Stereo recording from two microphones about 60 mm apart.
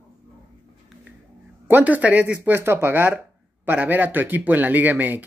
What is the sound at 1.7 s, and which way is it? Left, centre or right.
Speech, right.